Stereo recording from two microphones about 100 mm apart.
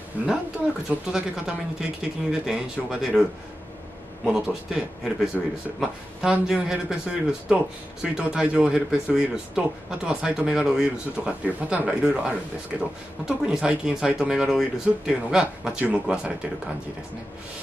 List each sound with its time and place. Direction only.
0.2 s speech: 15° right (ahead or behind)